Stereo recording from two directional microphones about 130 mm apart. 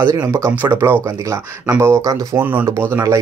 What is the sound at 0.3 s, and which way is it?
Speech, 20° right (ahead or behind).